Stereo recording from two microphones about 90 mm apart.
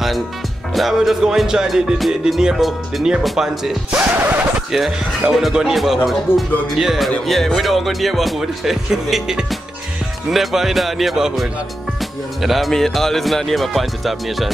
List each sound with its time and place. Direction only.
0.7 s music: centre (ahead or behind); by 4.6 s 20° right (ahead or behind)
4.6 s music: 5° right (ahead or behind)
6.3 s speech: 25° left (ahead or behind)
6.7 s music: centre (ahead or behind)